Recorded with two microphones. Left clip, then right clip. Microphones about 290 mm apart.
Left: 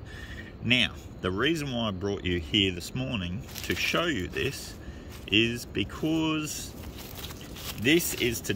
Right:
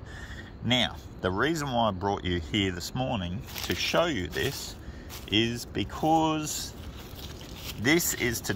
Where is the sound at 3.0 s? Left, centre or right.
Centre.